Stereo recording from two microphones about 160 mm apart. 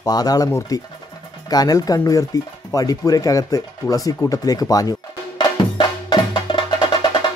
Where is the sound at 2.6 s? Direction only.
20° left (ahead or behind).